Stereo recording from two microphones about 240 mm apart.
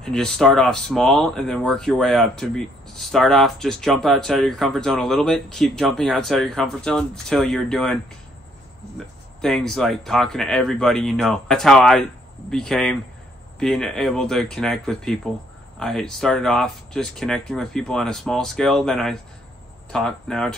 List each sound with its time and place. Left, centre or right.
0.0 s speech: centre